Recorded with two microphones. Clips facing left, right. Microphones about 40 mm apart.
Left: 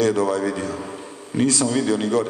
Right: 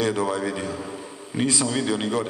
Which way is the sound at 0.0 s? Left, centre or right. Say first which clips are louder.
Left 4 dB; centre.